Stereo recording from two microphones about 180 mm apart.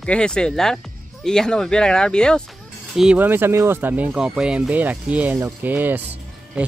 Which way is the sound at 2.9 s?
5° right (ahead or behind).